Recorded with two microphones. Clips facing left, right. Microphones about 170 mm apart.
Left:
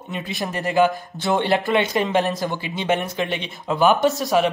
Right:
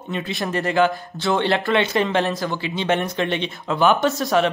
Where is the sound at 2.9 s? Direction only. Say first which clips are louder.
Right 1 dB; 5° left (ahead or behind).